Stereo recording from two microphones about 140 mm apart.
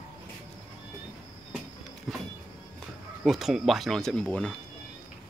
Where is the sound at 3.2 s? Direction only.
Centre (ahead or behind).